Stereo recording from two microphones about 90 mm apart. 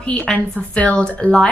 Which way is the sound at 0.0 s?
10° left (ahead or behind).